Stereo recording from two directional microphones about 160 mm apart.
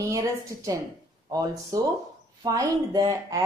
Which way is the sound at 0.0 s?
20° right (ahead or behind).